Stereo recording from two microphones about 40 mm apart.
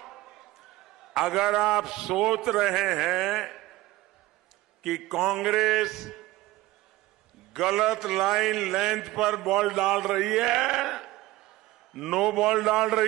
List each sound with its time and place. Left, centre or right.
0.0 s a sound: centre
1.0 s a man's voice: centre
4.8 s a man's voice: centre
7.5 s a man's voice: centre